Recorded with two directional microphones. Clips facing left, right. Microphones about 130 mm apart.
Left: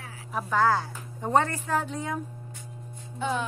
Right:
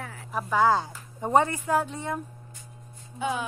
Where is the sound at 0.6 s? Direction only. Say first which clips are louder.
Right 2 dB; 15° right (ahead or behind).